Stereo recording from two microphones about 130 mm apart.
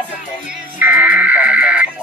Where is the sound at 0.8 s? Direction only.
10° right (ahead or behind).